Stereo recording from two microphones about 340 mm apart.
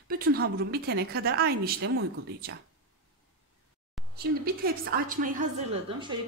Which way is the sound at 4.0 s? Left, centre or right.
Centre.